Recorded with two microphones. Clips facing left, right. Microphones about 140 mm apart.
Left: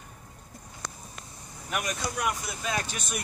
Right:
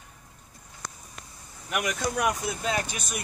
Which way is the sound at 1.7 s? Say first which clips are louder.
Right 3 dB; 70° right (ahead or behind).